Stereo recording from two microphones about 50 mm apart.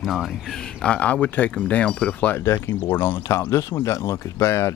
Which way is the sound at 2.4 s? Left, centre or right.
Left.